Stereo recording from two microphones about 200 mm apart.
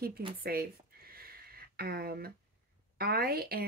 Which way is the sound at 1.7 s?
50° right (ahead or behind).